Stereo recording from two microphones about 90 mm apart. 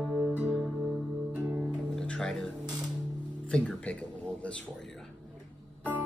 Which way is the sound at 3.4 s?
15° left (ahead or behind).